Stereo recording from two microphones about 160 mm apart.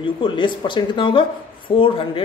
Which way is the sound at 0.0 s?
30° left (ahead or behind).